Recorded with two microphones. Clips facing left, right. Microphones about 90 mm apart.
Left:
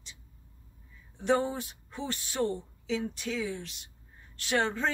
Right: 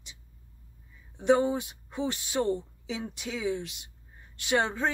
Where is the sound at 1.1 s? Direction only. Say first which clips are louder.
Right 4 dB; 10° right (ahead or behind).